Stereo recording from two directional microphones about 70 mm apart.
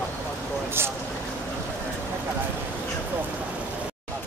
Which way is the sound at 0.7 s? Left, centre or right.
Right.